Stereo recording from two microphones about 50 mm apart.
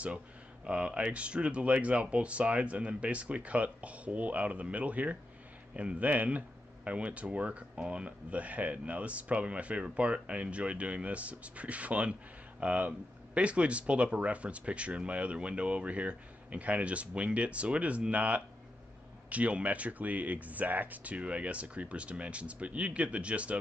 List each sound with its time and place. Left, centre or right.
0.7 s speech: right